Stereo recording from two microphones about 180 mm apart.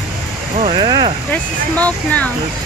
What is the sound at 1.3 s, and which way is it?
Speech, 10° left (ahead or behind).